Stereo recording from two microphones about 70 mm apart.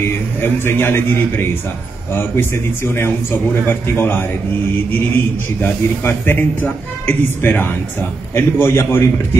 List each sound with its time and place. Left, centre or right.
0.4 s a man's voice: left